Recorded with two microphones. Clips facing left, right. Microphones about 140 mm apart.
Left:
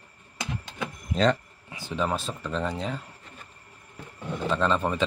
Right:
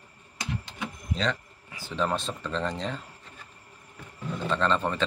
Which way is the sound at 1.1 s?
45° left (ahead or behind).